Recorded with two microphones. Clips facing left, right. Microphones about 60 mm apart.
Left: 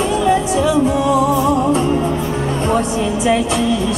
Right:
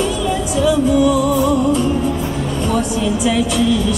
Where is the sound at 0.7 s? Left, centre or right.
Left.